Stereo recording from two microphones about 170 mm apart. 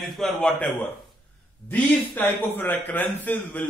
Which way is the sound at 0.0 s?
Centre (ahead or behind).